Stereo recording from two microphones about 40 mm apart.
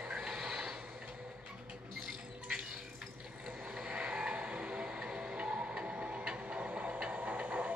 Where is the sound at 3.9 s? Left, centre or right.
Right.